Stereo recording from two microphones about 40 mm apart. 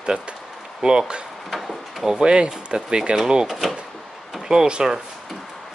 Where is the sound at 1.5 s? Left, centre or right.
Centre.